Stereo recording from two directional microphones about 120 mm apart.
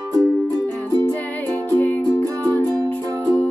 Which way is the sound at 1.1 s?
15° left (ahead or behind).